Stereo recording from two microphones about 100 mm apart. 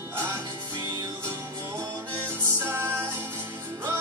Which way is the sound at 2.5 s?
25° right (ahead or behind).